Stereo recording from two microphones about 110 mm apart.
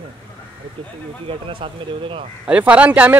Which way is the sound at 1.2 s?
55° right (ahead or behind).